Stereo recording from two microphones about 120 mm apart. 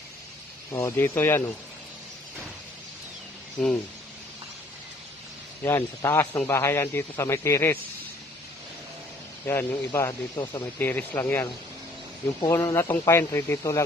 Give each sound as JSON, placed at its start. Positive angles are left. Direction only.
{"t": 0.7, "sound": "a man's voice", "side_deg": 20}
{"t": 3.6, "sound": "speech", "side_deg": 0}
{"t": 5.6, "sound": "a man's voice", "side_deg": 25}
{"t": 9.5, "sound": "a man's voice", "side_deg": 20}
{"t": 10.4, "sound": "speech", "side_deg": 40}
{"t": 10.8, "sound": "speech", "side_deg": 15}
{"t": 12.4, "sound": "a man's voice", "side_deg": 20}